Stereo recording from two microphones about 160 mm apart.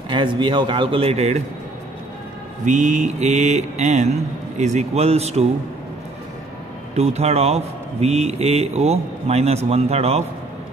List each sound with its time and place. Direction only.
0.1 s speech: 30° right (ahead or behind)
2.6 s speech: 50° right (ahead or behind)
7.0 s speech: 40° right (ahead or behind)